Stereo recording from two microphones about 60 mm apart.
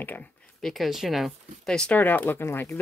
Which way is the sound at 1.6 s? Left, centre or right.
Centre.